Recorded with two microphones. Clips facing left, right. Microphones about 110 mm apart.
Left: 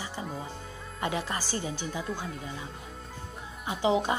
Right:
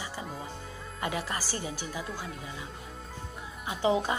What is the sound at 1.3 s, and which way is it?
Speech, 25° left (ahead or behind).